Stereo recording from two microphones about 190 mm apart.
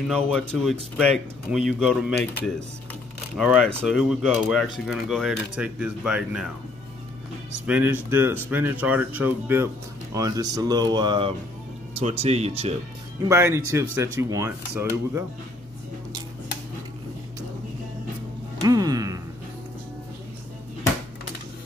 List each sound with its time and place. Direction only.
0.1 s speech: 5° left (ahead or behind)
7.6 s speech: 10° right (ahead or behind); by 12.7 s 35° right (ahead or behind)
13.3 s speech: 15° right (ahead or behind)
18.6 s music: 20° right (ahead or behind)